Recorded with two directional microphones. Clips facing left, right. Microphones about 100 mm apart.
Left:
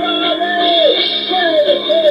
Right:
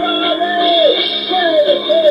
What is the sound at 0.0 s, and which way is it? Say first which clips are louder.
Music: right 1 dB; 35° right (ahead or behind).